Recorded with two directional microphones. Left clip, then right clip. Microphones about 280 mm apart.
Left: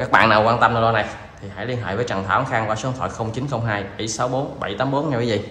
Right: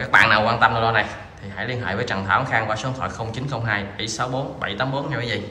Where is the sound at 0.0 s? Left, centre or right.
Centre.